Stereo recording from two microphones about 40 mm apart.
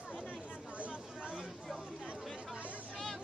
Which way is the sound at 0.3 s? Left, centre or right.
Right.